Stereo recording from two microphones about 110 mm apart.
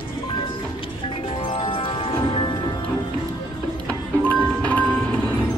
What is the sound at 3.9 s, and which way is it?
Music, 15° left (ahead or behind).